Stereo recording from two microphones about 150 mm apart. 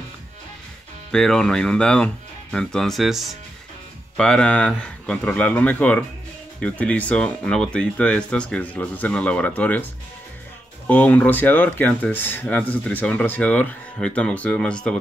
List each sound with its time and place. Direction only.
1.1 s speech: 5° left (ahead or behind)
10.9 s speech: 10° left (ahead or behind)